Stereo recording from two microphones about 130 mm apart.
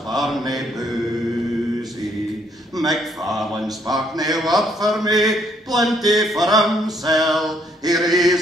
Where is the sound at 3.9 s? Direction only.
30° right (ahead or behind).